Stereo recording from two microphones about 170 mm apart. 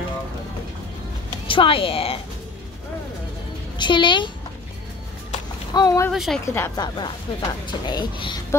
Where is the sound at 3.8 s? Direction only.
30° left (ahead or behind).